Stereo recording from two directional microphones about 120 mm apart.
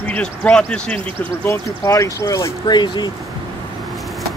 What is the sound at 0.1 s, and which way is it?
Speech, 10° left (ahead or behind).